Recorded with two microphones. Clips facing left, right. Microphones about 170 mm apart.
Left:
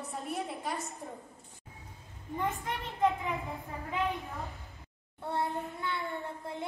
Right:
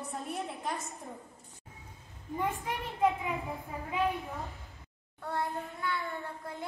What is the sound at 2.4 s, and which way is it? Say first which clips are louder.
Speech: right 1 dB; 10° right (ahead or behind).